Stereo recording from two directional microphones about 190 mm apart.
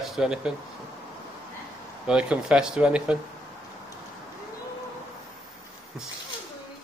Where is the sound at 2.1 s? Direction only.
5° right (ahead or behind).